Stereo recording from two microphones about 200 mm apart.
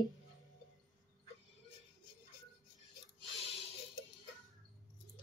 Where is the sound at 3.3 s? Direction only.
30° left (ahead or behind).